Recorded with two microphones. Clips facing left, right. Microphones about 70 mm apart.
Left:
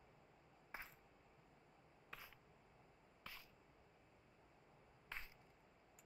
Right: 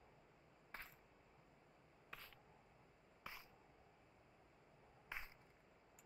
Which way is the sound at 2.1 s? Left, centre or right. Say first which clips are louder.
Even; centre.